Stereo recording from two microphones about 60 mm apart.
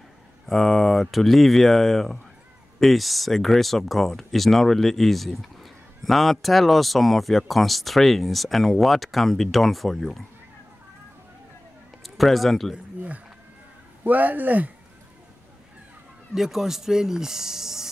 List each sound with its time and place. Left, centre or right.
0.5 s speech: centre
12.2 s speech: centre
12.7 s a sound: right
14.0 s speech: right
16.3 s speech: centre